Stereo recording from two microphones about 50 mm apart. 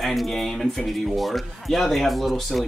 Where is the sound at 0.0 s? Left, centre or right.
Centre.